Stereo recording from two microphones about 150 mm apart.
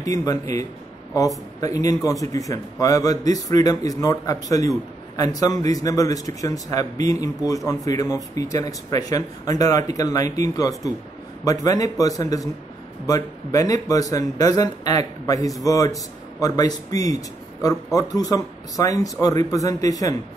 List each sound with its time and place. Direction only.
0.0 s a man's voice: 25° left (ahead or behind)